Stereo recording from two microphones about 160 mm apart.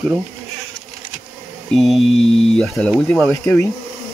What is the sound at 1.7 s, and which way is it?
Speech, centre (ahead or behind).